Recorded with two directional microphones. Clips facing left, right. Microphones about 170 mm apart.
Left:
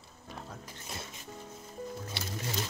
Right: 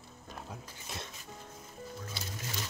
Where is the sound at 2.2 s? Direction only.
70° left (ahead or behind).